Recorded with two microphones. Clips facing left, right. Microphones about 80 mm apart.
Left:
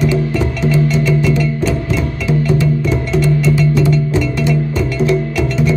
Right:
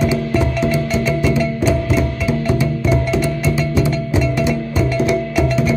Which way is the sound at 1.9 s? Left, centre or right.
Centre.